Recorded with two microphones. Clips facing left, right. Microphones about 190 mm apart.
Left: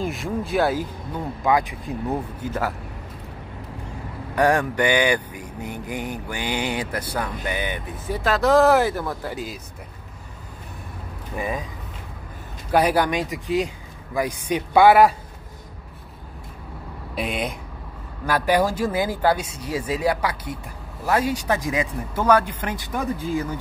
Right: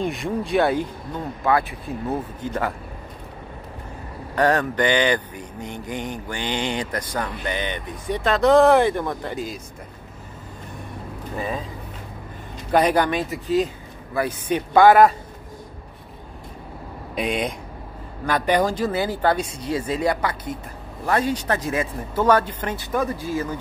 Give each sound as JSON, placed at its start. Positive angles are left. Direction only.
{"t": 0.0, "sound": "speech", "side_deg": 0}
{"t": 1.2, "sound": "speech", "side_deg": 15}
{"t": 4.4, "sound": "speech", "side_deg": 10}
{"t": 11.3, "sound": "speech", "side_deg": 15}
{"t": 12.7, "sound": "speech", "side_deg": 10}
{"t": 17.1, "sound": "speech", "side_deg": 5}